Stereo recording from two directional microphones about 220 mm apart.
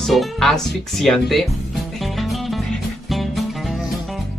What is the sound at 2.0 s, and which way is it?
Music, centre (ahead or behind).